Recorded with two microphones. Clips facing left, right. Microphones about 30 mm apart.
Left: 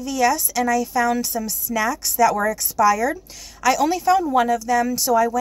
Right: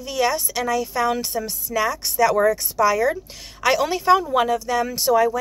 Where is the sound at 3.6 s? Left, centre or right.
Right.